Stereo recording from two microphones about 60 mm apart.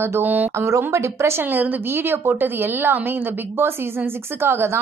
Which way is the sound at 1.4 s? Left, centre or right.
Right.